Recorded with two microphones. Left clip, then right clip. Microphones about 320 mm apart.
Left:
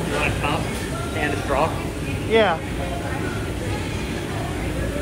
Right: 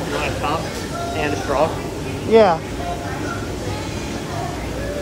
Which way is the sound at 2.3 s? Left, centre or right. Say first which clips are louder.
Right 5 dB; centre.